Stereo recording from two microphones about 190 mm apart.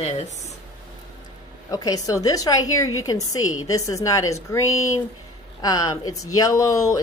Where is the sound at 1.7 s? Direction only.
20° left (ahead or behind).